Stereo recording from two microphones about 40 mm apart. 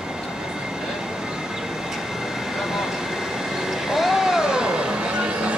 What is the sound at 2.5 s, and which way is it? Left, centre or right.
Vehicle, centre.